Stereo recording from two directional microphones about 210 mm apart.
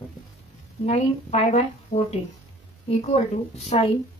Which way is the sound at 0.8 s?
30° left (ahead or behind).